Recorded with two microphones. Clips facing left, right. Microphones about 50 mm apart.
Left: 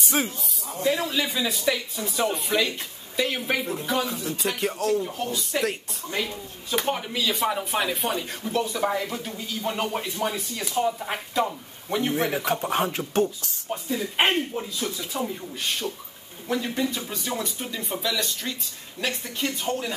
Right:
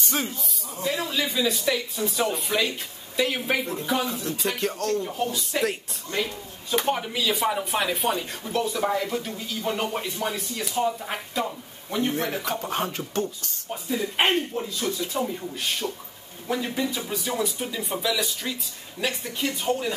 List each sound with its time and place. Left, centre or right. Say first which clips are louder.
0.8 s speech: left 2 dB; centre
13.8 s speech: even; centre